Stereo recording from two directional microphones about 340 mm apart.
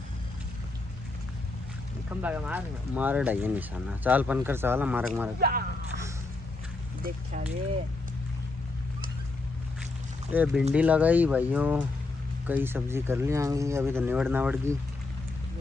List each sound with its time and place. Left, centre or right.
2.0 s speech: centre
5.4 s speech: right
10.3 s speech: centre